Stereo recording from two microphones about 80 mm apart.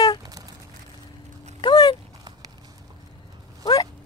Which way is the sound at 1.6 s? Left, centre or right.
Left.